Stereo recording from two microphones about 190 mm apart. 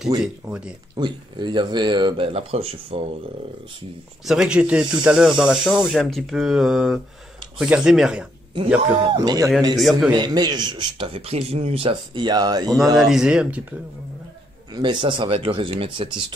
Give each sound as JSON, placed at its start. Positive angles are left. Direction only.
{"t": 0.2, "sound": "speech", "side_deg": -5}
{"t": 0.9, "sound": "a man's voice", "side_deg": -25}
{"t": 4.3, "sound": "speech", "side_deg": -5}
{"t": 9.0, "sound": "a man's voice", "side_deg": -20}
{"t": 9.8, "sound": "speech", "side_deg": 0}
{"t": 10.1, "sound": "a man's voice", "side_deg": -20}
{"t": 12.9, "sound": "speech", "side_deg": 0}
{"t": 14.7, "sound": "a man's voice", "side_deg": -25}